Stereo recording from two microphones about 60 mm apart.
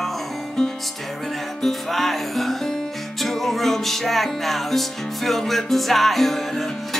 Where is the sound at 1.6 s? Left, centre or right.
Centre.